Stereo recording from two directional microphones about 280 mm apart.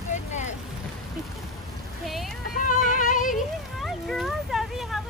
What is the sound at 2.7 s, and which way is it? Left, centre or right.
Music, left.